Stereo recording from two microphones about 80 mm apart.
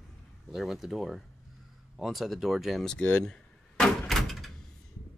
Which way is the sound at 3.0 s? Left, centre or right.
Centre.